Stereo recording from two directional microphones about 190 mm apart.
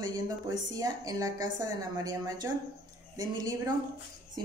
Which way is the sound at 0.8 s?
20° right (ahead or behind).